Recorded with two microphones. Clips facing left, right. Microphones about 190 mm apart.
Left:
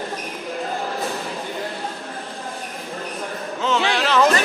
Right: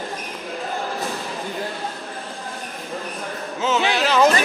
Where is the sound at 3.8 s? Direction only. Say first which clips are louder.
Right 1 dB; centre (ahead or behind).